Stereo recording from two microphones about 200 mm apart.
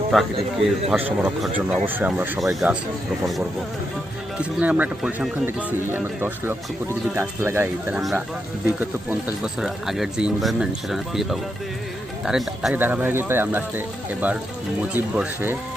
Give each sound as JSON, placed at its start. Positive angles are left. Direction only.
{"t": 0.4, "sound": "speech", "side_deg": -30}
{"t": 1.7, "sound": "speech", "side_deg": -5}
{"t": 4.4, "sound": "speech", "side_deg": -5}